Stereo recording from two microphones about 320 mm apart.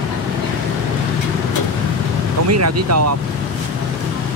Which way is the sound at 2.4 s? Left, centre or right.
Right.